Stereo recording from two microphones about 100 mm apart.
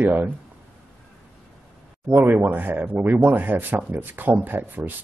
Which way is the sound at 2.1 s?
20° right (ahead or behind).